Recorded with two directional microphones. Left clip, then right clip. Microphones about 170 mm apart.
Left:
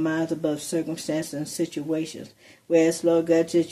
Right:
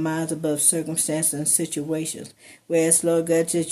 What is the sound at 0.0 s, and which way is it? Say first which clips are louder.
Speech: even; 40° right (ahead or behind).